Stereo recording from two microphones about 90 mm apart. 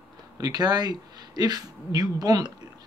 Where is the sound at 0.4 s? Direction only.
50° right (ahead or behind).